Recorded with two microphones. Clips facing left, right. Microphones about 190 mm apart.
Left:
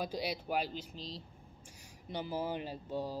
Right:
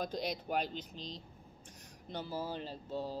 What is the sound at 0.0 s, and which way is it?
Speech, 10° left (ahead or behind).